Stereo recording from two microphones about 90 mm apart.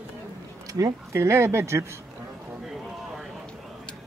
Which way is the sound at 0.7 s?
35° right (ahead or behind).